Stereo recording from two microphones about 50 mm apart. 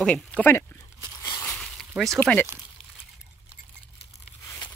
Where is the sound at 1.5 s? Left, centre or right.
Centre.